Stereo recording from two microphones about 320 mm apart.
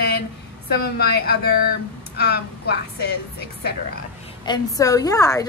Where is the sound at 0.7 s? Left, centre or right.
Left.